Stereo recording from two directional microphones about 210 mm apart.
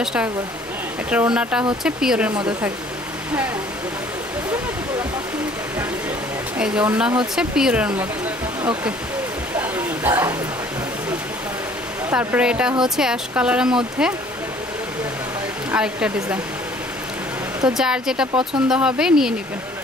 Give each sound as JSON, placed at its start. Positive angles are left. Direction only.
{"t": 0.0, "sound": "speech", "side_deg": -5}
{"t": 6.6, "sound": "speech", "side_deg": -5}
{"t": 9.6, "sound": "a sound", "side_deg": -10}
{"t": 12.1, "sound": "speech", "side_deg": -10}
{"t": 15.7, "sound": "speech", "side_deg": -5}
{"t": 17.6, "sound": "speech", "side_deg": -5}
{"t": 18.3, "sound": "speech", "side_deg": -25}
{"t": 18.7, "sound": "speech", "side_deg": -5}